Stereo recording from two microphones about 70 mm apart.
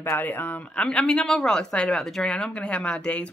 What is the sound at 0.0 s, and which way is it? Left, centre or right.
Speech, left.